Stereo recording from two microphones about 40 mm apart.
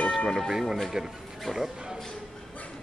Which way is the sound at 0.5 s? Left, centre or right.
Centre.